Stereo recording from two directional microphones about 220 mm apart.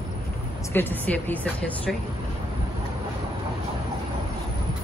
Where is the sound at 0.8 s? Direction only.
10° left (ahead or behind).